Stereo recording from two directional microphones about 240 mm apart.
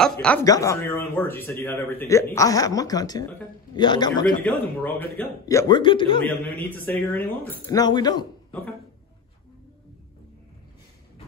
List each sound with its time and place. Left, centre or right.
0.0 s a man's voice: centre
4.9 s a man's voice: centre
6.6 s a man's voice: centre